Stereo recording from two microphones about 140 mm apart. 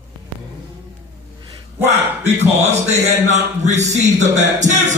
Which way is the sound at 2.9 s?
55° right (ahead or behind).